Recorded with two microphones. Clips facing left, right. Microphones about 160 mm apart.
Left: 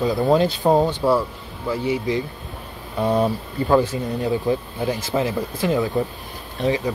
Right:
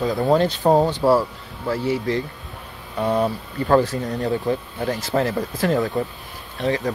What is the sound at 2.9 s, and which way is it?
Speech, 10° left (ahead or behind).